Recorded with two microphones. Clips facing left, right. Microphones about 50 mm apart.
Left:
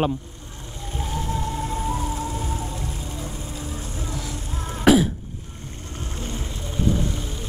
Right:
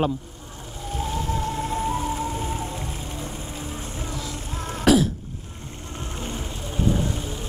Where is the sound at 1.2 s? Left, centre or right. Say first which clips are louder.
Right 1 dB; right.